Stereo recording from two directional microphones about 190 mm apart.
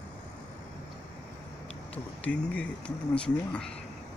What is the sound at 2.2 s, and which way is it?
Speech, 5° left (ahead or behind).